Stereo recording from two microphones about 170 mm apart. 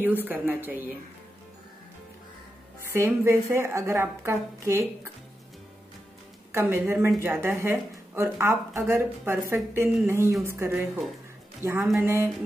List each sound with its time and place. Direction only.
0.0 s speech: 10° right (ahead or behind)
2.9 s speech: 15° right (ahead or behind)
6.5 s speech: 15° right (ahead or behind)